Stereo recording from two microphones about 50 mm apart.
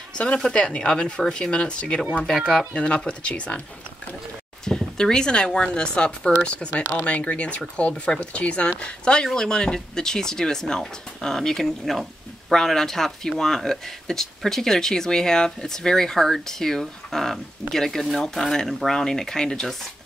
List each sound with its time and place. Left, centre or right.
0.6 s speech: centre
2.3 s speech: centre
2.7 s speech: left
4.6 s speech: centre